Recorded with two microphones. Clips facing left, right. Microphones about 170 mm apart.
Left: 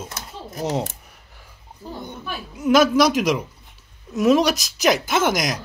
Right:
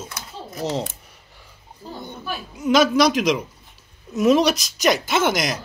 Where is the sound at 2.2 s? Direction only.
5° left (ahead or behind).